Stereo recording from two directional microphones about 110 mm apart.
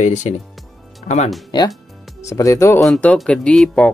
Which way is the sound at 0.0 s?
90° left.